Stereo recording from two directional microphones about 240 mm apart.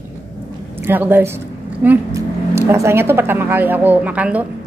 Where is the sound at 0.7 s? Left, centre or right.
Centre.